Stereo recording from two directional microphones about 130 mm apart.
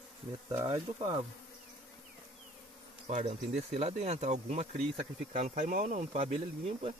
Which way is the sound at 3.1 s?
60° right (ahead or behind).